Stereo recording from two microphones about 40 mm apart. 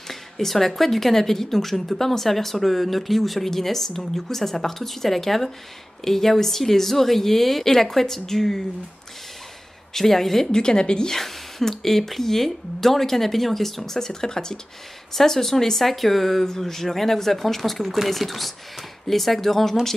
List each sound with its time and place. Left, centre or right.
0.1 s speech: centre
9.9 s speech: centre
10.5 s a woman's voice: centre
11.1 s speech: centre